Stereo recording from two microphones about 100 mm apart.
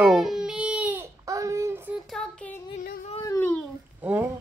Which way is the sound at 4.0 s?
15° right (ahead or behind).